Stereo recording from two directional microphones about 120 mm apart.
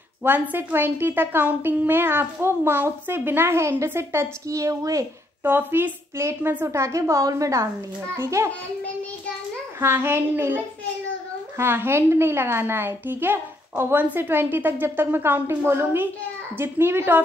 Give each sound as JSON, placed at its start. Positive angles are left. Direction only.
{"t": 0.2, "sound": "a woman's voice", "side_deg": -15}
{"t": 9.8, "sound": "a woman's voice", "side_deg": -20}